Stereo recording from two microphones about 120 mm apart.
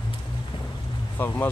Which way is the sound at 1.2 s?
15° left (ahead or behind).